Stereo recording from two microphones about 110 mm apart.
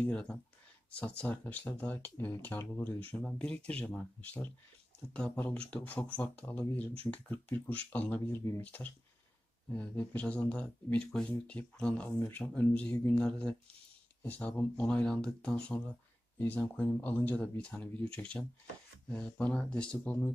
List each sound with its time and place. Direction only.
0.0 s speech: 10° left (ahead or behind)